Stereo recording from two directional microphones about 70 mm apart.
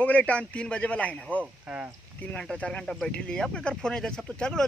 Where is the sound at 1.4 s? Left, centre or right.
Centre.